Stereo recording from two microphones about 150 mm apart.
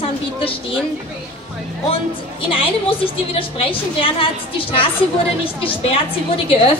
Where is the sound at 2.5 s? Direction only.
35° left (ahead or behind).